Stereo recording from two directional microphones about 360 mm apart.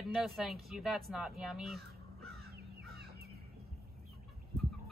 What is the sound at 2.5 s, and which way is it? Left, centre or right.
Crow, right.